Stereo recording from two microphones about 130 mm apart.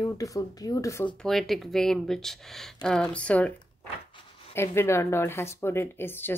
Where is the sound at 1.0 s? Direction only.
Centre (ahead or behind).